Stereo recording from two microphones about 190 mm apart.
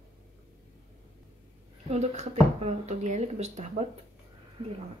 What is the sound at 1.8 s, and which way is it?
Speech, 35° right (ahead or behind).